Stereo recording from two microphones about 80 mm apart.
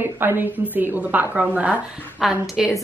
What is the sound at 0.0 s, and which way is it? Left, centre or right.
A woman's voice, right.